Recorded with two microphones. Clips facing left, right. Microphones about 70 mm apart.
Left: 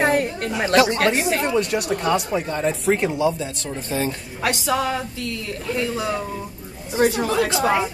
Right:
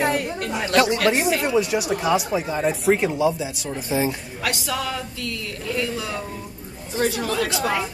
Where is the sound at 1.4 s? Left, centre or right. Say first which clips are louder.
Even; centre.